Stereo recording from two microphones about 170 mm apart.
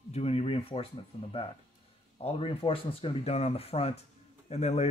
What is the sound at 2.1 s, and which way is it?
Speech, 35° left (ahead or behind).